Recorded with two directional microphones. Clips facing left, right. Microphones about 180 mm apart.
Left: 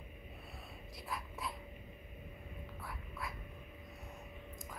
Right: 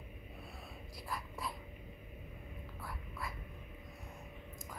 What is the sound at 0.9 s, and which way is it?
Speech, centre (ahead or behind).